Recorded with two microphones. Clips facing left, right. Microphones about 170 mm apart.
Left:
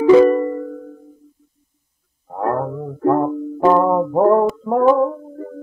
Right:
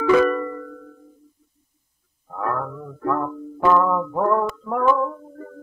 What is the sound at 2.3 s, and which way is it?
Music, 35° left (ahead or behind).